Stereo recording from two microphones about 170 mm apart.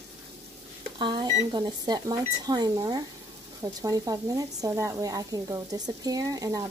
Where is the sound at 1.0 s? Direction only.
25° right (ahead or behind).